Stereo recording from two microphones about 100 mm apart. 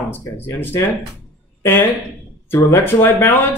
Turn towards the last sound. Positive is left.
turn(degrees=25)  # may be behind; listen again after turning